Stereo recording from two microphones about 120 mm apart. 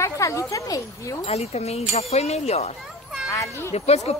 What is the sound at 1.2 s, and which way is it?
Speech, 65° left (ahead or behind).